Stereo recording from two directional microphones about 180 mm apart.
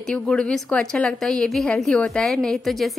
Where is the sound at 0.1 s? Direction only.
5° left (ahead or behind).